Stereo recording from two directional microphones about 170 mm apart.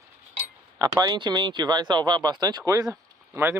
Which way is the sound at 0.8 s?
20° right (ahead or behind).